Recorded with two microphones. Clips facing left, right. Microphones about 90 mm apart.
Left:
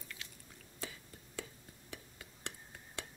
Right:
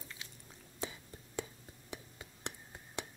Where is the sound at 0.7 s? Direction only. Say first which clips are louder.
Right 4 dB; 20° right (ahead or behind).